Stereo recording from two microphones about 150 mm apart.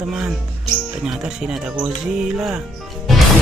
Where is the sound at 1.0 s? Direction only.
5° right (ahead or behind).